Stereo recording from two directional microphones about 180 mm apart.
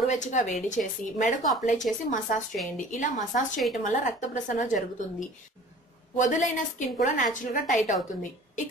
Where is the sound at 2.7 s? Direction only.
45° left (ahead or behind).